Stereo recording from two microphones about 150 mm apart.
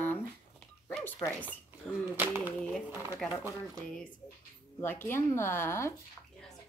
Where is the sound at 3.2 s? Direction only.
Centre (ahead or behind).